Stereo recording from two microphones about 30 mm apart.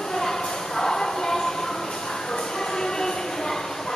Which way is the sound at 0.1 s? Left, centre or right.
Centre.